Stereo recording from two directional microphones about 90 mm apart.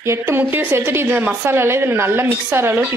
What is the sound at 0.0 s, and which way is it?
Speech, 30° right (ahead or behind).